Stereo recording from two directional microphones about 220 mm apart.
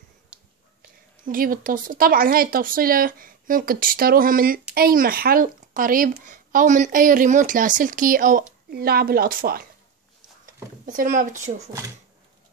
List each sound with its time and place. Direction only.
0.3 s whispering: 5° right (ahead or behind)
1.2 s a woman's voice: 40° right (ahead or behind)
10.4 s a sound: 40° right (ahead or behind)